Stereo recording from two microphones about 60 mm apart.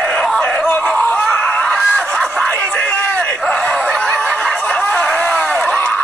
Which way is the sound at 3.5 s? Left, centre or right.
Centre.